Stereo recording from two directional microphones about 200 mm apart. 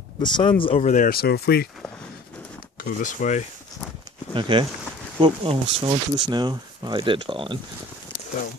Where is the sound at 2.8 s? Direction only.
40° left (ahead or behind).